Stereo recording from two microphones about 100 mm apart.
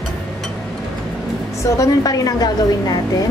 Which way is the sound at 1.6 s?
35° left (ahead or behind).